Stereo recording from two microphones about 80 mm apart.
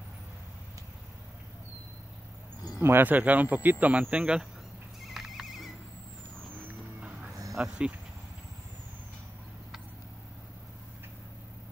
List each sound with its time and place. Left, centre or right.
2.8 s speech: right
5.0 s neigh: centre
6.3 s vehicle: right
7.5 s speech: centre